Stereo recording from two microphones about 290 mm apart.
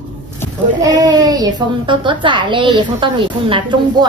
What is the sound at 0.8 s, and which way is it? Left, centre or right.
Speech, centre.